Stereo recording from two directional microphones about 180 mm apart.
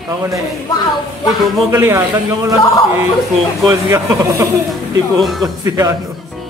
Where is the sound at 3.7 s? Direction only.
15° right (ahead or behind).